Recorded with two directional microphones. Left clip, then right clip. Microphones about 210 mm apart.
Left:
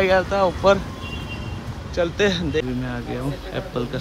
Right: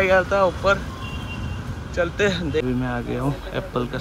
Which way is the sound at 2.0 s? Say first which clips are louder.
Left 1 dB; 15° left (ahead or behind).